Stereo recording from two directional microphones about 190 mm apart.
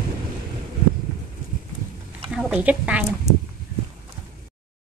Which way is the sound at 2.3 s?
5° right (ahead or behind).